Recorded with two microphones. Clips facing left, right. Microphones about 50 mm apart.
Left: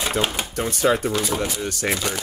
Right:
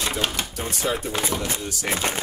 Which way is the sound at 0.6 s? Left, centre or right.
Left.